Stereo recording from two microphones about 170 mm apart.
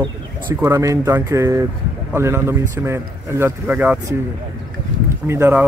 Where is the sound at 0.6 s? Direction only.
15° right (ahead or behind).